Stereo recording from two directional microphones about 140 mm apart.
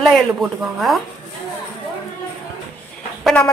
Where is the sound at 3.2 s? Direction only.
5° left (ahead or behind).